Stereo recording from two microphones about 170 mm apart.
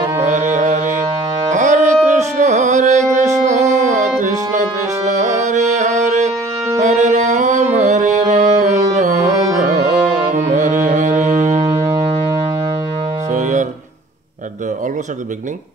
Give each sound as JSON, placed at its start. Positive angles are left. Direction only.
{"t": 0.2, "sound": "music", "side_deg": -45}
{"t": 10.3, "sound": "music", "side_deg": -45}
{"t": 11.6, "sound": "music", "side_deg": -30}
{"t": 13.3, "sound": "music", "side_deg": -45}